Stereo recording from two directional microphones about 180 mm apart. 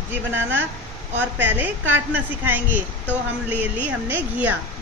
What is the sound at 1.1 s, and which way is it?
A woman's voice, 10° right (ahead or behind).